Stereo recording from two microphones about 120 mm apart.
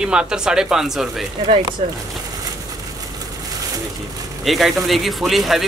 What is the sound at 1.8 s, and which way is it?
Speech, 55° right (ahead or behind).